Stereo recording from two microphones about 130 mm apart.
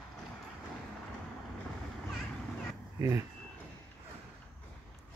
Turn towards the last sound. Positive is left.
turn(degrees=-25)  # may be behind; listen again after turning